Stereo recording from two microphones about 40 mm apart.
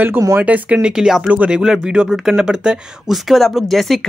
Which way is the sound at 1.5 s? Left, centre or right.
Centre.